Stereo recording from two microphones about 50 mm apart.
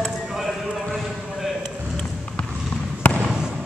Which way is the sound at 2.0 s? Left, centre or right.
Left.